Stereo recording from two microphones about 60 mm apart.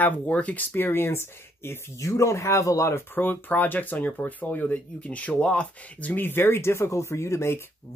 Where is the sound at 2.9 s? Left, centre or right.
Left.